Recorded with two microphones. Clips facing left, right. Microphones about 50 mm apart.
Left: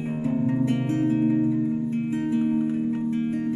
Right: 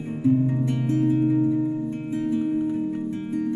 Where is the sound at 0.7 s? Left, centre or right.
Left.